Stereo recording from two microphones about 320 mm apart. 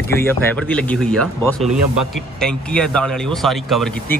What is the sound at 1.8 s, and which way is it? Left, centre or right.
Speech, right.